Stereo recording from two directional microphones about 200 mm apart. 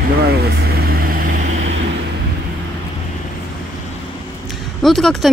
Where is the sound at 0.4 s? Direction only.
50° right (ahead or behind).